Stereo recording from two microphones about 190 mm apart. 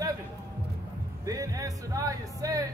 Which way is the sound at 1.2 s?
15° right (ahead or behind).